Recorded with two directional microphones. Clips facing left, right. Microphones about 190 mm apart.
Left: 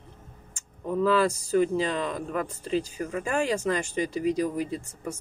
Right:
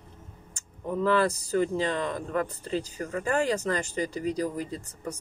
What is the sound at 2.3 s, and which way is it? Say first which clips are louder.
Speech: left 2 dB; 15° left (ahead or behind).